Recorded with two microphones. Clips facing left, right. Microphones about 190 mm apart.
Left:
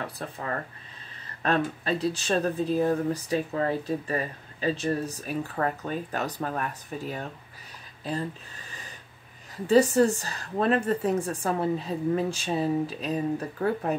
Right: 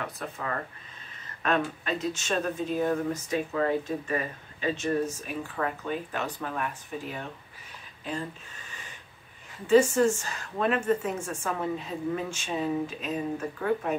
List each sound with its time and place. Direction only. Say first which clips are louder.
0.0 s speech: left 1 dB; 35° left (ahead or behind)
9.7 s speech: left 1 dB; 35° left (ahead or behind)